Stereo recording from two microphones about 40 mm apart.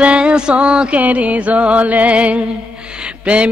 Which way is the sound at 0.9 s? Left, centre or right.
Right.